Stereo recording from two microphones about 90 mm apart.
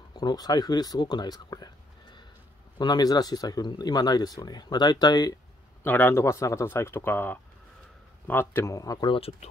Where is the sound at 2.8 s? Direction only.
45° left (ahead or behind).